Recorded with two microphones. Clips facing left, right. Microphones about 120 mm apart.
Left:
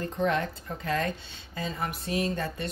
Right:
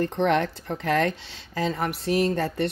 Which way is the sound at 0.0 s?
85° right.